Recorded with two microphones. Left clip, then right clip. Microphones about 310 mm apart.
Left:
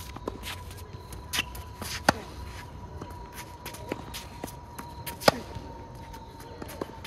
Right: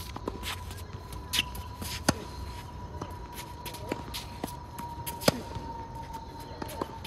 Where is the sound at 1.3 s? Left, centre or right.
Centre.